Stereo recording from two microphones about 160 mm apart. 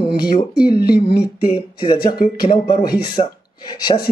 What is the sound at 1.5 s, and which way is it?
Speech, 35° left (ahead or behind).